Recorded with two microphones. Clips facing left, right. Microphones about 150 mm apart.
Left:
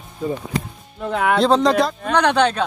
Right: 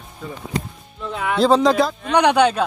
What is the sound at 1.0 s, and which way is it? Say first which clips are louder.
Speech: left 5 dB; 55° left (ahead or behind).